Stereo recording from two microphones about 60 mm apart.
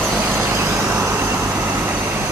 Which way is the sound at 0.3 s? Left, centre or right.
Right.